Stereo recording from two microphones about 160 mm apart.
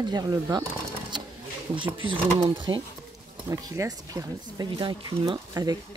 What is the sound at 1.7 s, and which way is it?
Speech, 30° right (ahead or behind).